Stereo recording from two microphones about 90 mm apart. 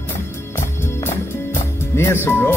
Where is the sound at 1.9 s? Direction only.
30° left (ahead or behind).